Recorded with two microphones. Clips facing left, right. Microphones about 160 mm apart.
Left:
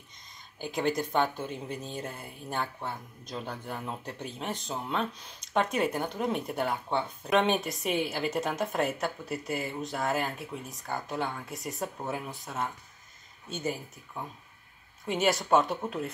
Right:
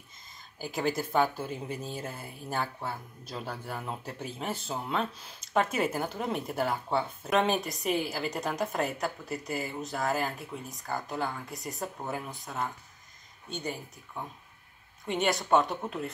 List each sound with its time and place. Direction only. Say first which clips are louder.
0.6 s speech: left 1 dB; centre (ahead or behind)